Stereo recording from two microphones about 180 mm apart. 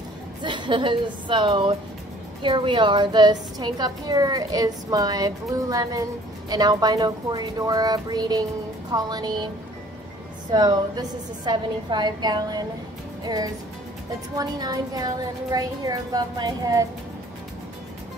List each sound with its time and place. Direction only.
0.4 s a woman's voice: 25° right (ahead or behind)
10.5 s a woman's voice: 20° right (ahead or behind)